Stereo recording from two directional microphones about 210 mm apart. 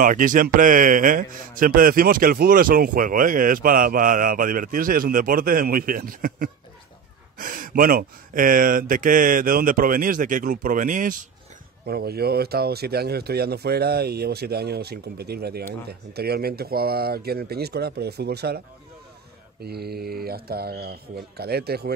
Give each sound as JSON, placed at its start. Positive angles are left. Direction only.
{"t": 0.0, "sound": "a man's voice", "side_deg": -40}
{"t": 19.6, "sound": "speech", "side_deg": -50}